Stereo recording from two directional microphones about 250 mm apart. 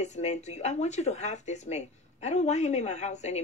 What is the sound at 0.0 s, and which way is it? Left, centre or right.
A woman's voice, left.